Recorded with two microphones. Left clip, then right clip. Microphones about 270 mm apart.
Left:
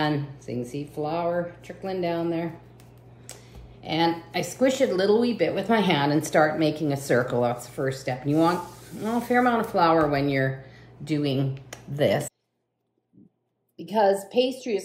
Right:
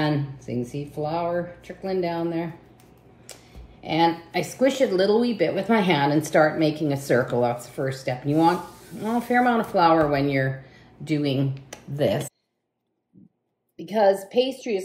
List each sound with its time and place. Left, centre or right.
0.0 s a woman's voice: centre
3.8 s a woman's voice: centre
13.7 s a woman's voice: centre